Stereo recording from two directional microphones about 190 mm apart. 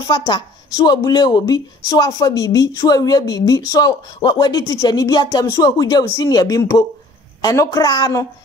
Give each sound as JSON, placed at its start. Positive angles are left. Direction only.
{"t": 0.1, "sound": "speech", "side_deg": 20}